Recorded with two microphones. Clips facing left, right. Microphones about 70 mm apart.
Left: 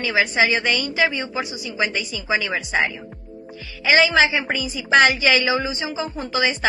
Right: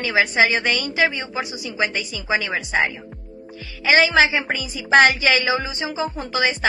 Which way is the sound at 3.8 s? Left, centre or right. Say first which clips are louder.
Even; right.